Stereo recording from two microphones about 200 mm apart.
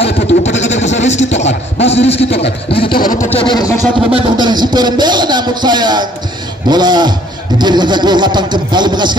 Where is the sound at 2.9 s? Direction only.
45° left (ahead or behind).